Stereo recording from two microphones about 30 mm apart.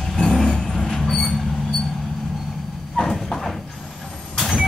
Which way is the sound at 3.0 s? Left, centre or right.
Centre.